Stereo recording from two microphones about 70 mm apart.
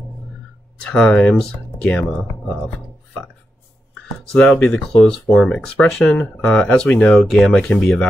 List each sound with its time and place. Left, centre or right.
0.8 s speech: centre
1.8 s speech: centre
4.6 s speech: centre
7.2 s speech: centre
7.5 s speech: centre